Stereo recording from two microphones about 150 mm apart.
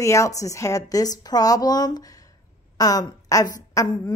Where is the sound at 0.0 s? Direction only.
20° left (ahead or behind).